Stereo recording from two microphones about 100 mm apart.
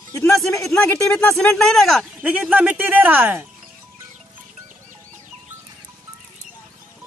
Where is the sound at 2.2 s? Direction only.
15° right (ahead or behind).